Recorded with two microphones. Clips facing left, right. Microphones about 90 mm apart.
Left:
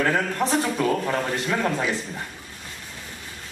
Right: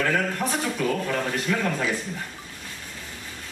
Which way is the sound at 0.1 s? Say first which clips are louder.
Left 2 dB; 30° left (ahead or behind).